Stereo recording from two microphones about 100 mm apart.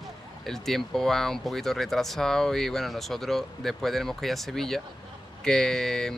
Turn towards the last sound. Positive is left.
turn(degrees=5)  # may be behind; listen again after turning